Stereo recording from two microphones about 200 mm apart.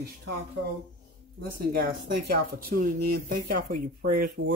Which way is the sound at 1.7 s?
50° right (ahead or behind).